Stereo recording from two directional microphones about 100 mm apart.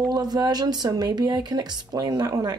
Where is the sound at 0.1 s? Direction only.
45° right (ahead or behind).